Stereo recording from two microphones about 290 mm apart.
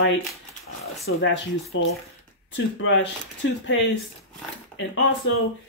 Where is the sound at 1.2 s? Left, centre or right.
Left.